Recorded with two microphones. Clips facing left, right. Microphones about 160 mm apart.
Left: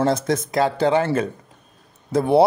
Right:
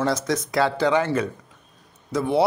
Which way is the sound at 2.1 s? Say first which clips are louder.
Left 5 dB; 55° left (ahead or behind).